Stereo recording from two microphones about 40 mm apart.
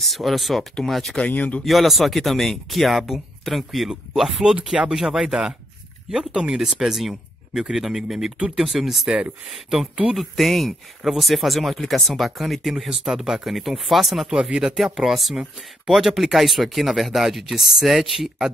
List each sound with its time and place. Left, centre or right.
0.0 s speech: centre
1.2 s speech: left
1.6 s speech: centre
3.9 s speech: centre
6.3 s speech: right
6.6 s speech: centre
10.1 s speech: centre
14.2 s speech: centre